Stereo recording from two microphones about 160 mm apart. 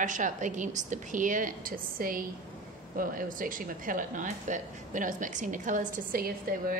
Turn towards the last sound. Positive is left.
turn(degrees=-65)  # may be behind; listen again after turning